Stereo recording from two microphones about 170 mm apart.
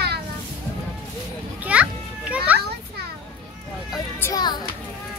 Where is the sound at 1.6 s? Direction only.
5° right (ahead or behind).